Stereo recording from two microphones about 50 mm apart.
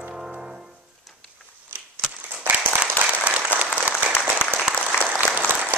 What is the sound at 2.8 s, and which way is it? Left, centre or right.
Applause, right.